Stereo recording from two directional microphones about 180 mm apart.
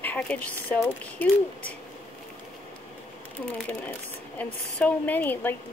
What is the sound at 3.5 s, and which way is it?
A woman's voice, 10° left (ahead or behind).